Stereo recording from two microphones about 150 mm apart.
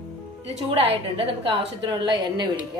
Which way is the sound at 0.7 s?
40° right (ahead or behind).